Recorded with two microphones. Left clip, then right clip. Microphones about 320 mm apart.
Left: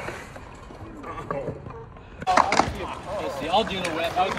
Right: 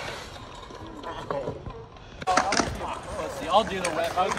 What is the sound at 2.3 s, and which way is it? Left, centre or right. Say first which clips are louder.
Chop: left 4 dB; centre.